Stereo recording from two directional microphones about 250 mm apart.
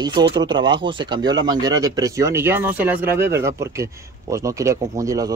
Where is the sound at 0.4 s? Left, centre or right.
Centre.